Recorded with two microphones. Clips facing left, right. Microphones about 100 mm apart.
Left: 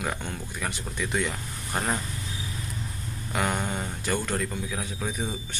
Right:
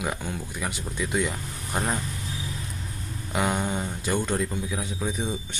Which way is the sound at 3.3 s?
15° right (ahead or behind).